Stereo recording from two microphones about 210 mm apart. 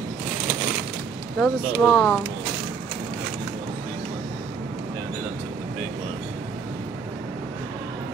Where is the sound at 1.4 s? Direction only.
Centre (ahead or behind).